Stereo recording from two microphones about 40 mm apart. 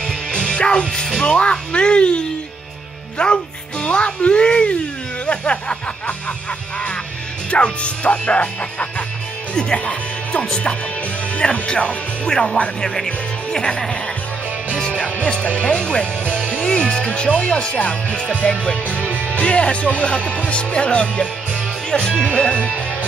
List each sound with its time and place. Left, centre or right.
0.0 s music: centre
1.2 s speech: left
7.5 s speech: left
9.6 s speech: left
15.3 s speech: left
16.4 s music: centre
16.7 s speech: left
22.3 s speech: left